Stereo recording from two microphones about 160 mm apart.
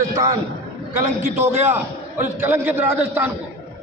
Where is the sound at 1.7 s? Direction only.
15° right (ahead or behind).